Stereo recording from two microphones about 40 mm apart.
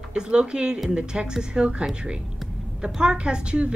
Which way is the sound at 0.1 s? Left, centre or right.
Right.